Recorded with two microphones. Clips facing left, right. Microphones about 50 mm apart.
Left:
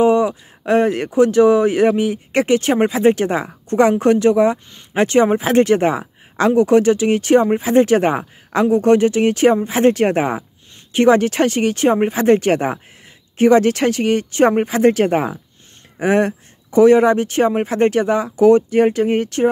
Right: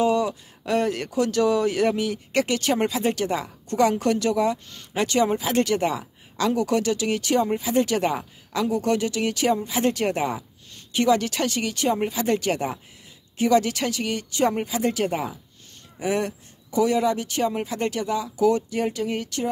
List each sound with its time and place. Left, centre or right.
0.0 s speech: left